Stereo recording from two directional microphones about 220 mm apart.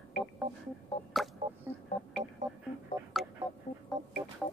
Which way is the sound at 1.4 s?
30° right (ahead or behind).